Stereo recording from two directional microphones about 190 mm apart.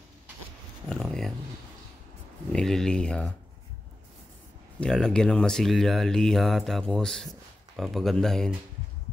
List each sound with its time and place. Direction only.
0.8 s speech: 5° left (ahead or behind)
2.5 s speech: centre (ahead or behind)
4.7 s speech: 5° left (ahead or behind)